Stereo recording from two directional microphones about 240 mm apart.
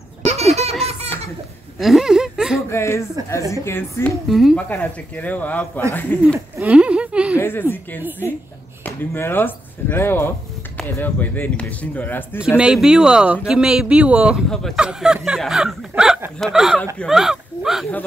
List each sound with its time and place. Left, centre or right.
0.2 s baby laughter: right
1.8 s a sound: centre
2.7 s a woman's voice: centre
6.2 s a sound: centre
7.3 s a woman's voice: centre
8.8 s a woman's voice: centre
12.5 s speech: centre